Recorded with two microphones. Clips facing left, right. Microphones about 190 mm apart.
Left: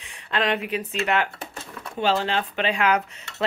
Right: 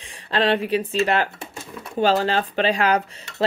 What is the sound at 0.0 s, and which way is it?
Speech, 35° right (ahead or behind).